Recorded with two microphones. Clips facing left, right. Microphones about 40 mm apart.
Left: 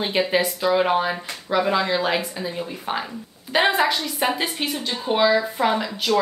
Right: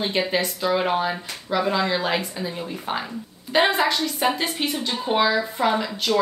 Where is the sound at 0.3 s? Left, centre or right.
Centre.